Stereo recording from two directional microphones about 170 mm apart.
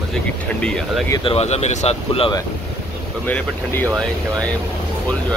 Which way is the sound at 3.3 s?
10° left (ahead or behind).